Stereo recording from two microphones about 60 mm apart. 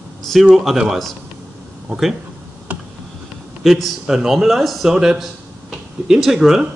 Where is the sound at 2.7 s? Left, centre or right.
Right.